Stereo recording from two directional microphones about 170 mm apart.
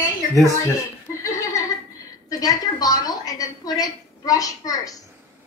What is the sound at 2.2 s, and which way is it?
A woman's voice, 20° left (ahead or behind).